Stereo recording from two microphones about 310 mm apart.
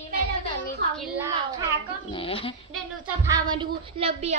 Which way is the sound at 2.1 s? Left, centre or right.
Centre.